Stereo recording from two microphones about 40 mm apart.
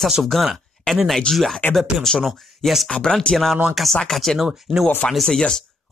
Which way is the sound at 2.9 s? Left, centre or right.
Left.